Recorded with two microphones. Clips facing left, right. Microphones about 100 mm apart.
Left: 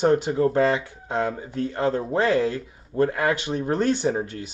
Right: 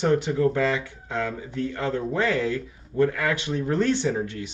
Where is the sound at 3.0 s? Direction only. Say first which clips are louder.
Left 1 dB; 25° left (ahead or behind).